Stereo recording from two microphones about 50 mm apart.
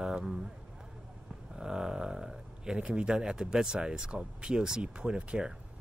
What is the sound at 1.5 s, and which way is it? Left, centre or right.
Speech, centre.